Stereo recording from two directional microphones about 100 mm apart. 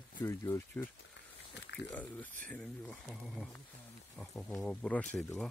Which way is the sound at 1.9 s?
15° left (ahead or behind).